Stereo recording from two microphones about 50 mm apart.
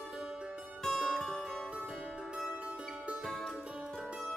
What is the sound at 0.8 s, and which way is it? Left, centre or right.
Zither, centre.